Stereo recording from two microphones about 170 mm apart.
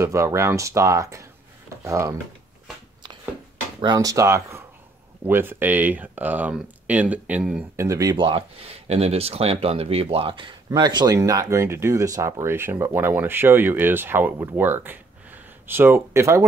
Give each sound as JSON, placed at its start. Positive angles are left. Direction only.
{"t": 0.0, "sound": "speech", "side_deg": -15}
{"t": 3.8, "sound": "speech", "side_deg": -20}
{"t": 7.7, "sound": "speech", "side_deg": -20}